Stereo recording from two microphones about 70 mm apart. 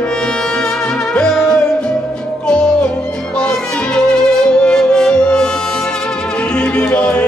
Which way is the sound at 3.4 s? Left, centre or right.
Centre.